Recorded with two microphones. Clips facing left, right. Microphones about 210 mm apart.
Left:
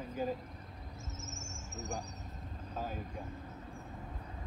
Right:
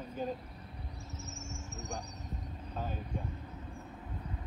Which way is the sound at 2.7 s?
5° left (ahead or behind).